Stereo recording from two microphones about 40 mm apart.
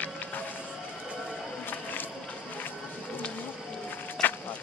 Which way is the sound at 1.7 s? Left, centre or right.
Left.